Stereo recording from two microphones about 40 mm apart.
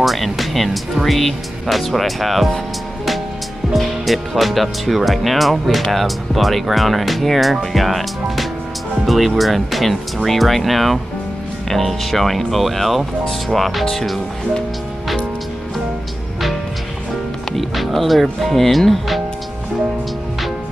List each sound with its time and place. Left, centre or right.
0.0 s speech: centre
3.7 s speech: centre
17.5 s speech: centre